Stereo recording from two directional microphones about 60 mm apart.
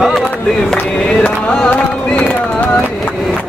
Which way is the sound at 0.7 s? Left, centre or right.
Centre.